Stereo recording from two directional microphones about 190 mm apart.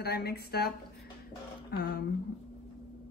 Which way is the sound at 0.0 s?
55° left (ahead or behind).